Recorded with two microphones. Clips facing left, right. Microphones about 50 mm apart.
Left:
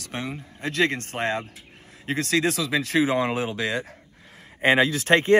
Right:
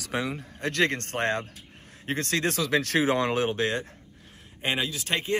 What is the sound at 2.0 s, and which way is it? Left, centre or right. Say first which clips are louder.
Speech: left 4 dB; left.